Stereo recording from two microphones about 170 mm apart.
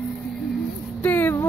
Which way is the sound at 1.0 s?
10° left (ahead or behind).